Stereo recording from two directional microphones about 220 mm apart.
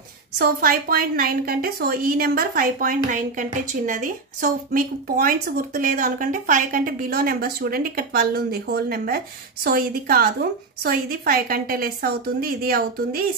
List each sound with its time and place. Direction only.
0.4 s a woman's voice: 40° right (ahead or behind)